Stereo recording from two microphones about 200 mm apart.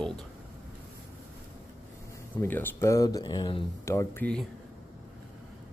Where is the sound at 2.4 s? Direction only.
10° left (ahead or behind).